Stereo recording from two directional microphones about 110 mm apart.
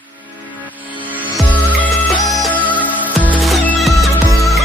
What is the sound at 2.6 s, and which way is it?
Music, 15° right (ahead or behind).